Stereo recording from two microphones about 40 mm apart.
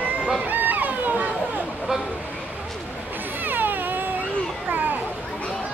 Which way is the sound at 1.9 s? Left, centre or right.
Centre.